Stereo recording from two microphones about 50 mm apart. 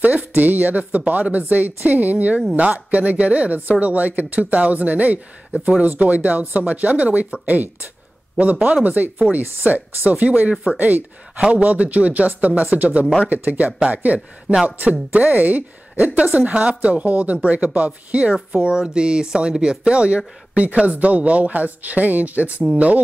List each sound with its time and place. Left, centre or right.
0.0 s a sound: right
0.3 s a woman's voice: right
18.6 s a woman's voice: centre